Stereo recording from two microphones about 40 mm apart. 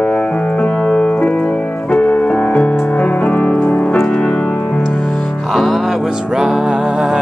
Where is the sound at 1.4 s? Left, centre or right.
Left.